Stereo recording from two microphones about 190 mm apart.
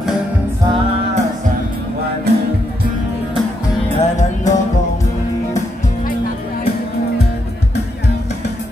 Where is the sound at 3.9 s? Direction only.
40° left (ahead or behind).